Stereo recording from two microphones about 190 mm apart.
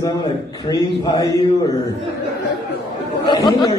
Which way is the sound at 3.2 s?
25° left (ahead or behind).